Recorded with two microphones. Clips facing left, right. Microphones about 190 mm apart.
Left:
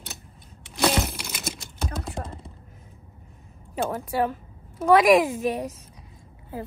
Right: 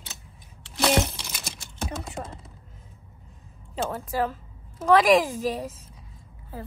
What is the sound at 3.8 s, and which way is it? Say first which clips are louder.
Speech: left 2 dB; 15° left (ahead or behind).